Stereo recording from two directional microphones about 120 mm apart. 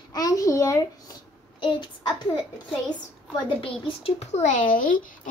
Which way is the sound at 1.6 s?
40° left (ahead or behind).